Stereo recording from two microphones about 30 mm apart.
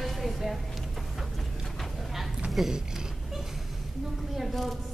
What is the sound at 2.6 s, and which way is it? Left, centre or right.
Speech, centre.